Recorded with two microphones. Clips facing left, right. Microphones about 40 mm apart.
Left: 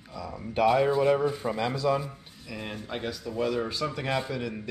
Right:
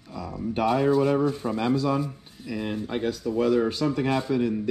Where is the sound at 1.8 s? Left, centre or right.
Centre.